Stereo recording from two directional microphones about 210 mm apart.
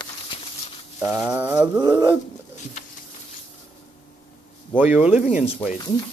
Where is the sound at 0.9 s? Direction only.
10° right (ahead or behind).